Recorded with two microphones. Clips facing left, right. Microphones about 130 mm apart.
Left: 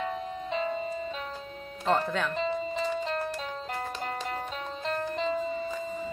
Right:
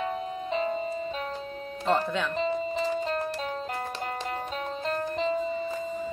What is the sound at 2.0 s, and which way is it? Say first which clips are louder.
Speech: right 1 dB; centre (ahead or behind).